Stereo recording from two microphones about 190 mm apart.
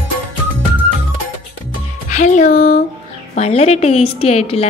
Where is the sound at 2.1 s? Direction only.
40° left (ahead or behind).